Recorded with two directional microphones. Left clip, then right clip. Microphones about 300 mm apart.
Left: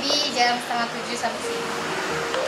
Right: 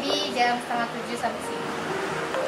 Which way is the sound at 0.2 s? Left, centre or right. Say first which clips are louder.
Left 2 dB; centre.